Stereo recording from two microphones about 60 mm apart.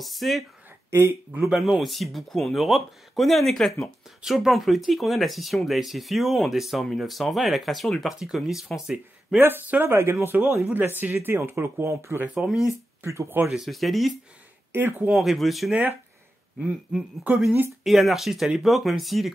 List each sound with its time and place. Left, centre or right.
0.0 s speech: centre
0.8 s speech: right
1.5 s speech: centre
9.4 s speech: right
11.3 s speech: right
12.4 s speech: centre
13.0 s speech: right
13.5 s speech: centre
14.7 s speech: right
15.1 s speech: centre
17.8 s speech: centre